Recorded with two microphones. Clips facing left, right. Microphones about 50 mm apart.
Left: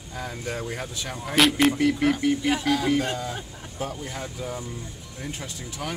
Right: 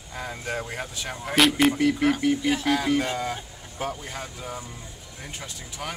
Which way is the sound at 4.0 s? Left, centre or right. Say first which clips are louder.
Left 2 dB; centre.